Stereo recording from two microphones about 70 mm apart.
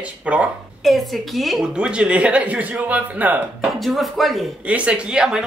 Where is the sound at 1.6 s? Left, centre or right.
Centre.